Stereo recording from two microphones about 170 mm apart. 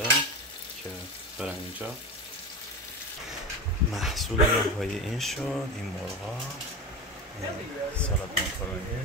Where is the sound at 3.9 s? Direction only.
Centre (ahead or behind).